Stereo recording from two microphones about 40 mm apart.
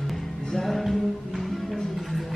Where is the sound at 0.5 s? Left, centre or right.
Centre.